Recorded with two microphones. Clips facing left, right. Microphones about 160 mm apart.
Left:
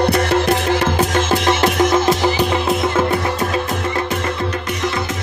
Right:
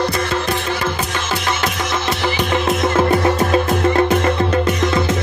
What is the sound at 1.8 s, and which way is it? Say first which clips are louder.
Music: left 7 dB; 45° left (ahead or behind).